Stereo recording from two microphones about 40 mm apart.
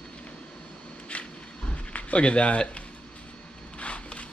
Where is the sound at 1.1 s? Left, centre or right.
Left.